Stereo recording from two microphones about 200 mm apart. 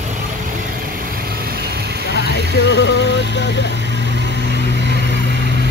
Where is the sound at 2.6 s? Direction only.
65° left (ahead or behind).